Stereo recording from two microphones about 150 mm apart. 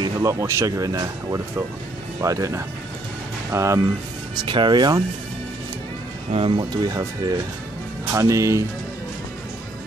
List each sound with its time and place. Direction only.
0.0 s speech: 20° right (ahead or behind)
4.4 s speech: 30° right (ahead or behind)
6.3 s speech: 35° right (ahead or behind); by 8.6 s 20° right (ahead or behind)